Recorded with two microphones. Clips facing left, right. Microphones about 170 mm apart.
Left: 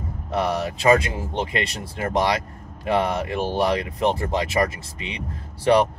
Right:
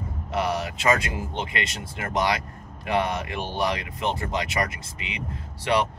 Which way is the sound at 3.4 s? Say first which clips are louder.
Left 5 dB; 35° left (ahead or behind).